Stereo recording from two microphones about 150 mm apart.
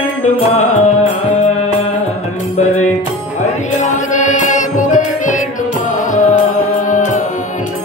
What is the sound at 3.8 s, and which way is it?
Music, 55° left (ahead or behind).